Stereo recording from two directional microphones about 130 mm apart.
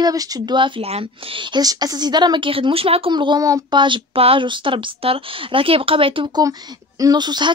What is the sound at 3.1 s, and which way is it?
Speech, 35° right (ahead or behind).